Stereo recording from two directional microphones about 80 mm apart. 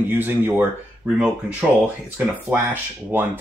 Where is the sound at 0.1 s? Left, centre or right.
Right.